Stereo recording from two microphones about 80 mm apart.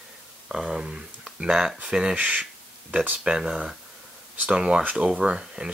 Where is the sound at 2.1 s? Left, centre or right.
Centre.